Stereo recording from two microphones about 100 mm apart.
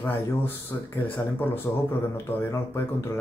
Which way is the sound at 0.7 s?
30° left (ahead or behind).